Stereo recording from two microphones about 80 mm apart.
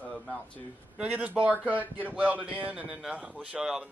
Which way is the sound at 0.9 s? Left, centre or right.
Centre.